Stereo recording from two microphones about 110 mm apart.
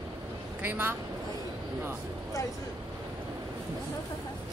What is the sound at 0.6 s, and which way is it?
Speech, 15° right (ahead or behind).